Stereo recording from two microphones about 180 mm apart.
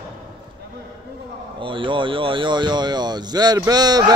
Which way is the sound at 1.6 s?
30° right (ahead or behind).